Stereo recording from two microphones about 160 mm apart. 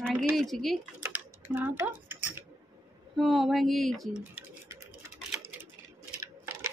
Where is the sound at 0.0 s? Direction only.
Centre (ahead or behind).